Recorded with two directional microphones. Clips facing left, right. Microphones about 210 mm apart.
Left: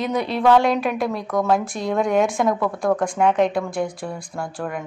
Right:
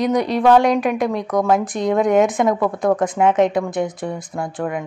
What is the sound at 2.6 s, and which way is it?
Speech, 20° right (ahead or behind).